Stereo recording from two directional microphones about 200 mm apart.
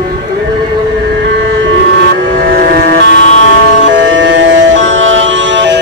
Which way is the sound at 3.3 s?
70° right (ahead or behind).